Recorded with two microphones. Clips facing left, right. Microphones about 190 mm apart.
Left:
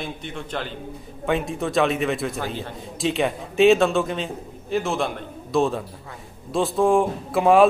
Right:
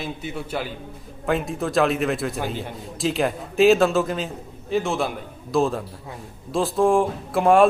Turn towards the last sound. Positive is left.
turn(degrees=0)  # may be behind; listen again after turning